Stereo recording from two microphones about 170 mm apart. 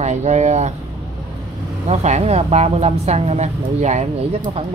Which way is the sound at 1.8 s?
40° right (ahead or behind).